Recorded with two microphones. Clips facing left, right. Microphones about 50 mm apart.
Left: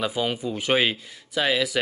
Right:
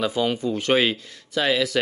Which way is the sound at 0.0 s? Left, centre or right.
Centre.